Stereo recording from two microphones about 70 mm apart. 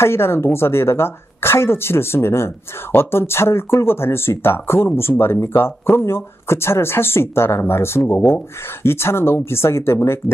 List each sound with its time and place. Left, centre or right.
0.0 s a woman's voice: left